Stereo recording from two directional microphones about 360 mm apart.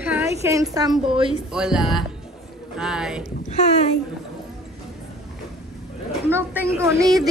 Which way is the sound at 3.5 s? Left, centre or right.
Centre.